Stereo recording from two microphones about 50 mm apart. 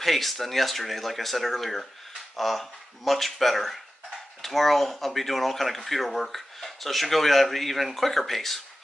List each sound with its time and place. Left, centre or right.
0.0 s speech: centre